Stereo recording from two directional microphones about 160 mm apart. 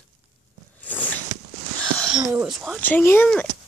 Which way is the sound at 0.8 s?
10° left (ahead or behind).